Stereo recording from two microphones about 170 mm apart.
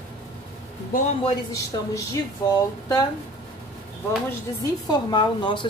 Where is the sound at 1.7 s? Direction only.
25° left (ahead or behind).